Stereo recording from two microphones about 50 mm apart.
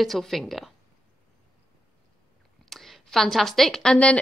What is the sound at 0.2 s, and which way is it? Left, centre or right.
Speech, centre.